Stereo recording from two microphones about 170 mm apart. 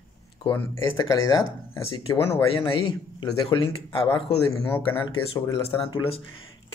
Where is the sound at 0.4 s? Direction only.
25° left (ahead or behind).